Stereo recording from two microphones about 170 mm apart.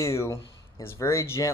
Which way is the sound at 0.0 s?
15° left (ahead or behind).